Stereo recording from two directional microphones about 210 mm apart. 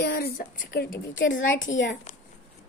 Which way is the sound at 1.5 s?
60° left (ahead or behind).